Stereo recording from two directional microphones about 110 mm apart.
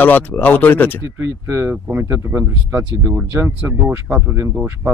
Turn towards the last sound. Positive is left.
turn(degrees=-5)  # may be behind; listen again after turning